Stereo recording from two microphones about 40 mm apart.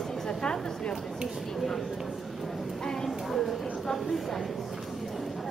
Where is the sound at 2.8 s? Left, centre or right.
Centre.